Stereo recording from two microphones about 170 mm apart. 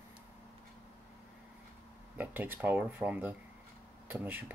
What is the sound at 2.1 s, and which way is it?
Speech, 10° right (ahead or behind).